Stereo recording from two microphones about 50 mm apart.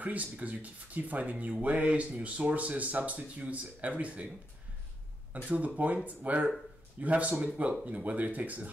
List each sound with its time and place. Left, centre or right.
0.0 s speech: right
5.3 s speech: right